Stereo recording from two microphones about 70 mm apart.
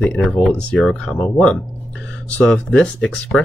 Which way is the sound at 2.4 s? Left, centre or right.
Centre.